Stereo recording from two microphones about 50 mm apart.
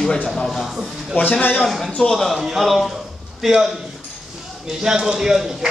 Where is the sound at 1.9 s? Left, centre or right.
Left.